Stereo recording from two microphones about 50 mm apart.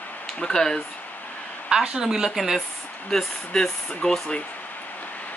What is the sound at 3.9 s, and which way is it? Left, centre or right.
Speech, centre.